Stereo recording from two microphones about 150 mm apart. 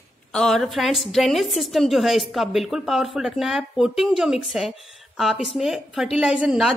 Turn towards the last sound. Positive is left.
turn(degrees=-5)  # may be behind; listen again after turning